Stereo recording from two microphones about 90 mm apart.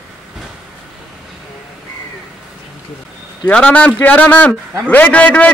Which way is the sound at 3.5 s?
10° left (ahead or behind).